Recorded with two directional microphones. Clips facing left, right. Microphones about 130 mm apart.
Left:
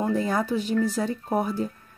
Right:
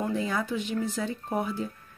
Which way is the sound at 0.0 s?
40° left (ahead or behind).